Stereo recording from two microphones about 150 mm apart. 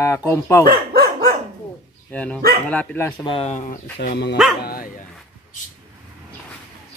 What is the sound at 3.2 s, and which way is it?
Speech, 35° left (ahead or behind).